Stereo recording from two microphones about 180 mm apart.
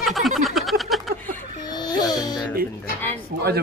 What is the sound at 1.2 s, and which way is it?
Music, 40° right (ahead or behind).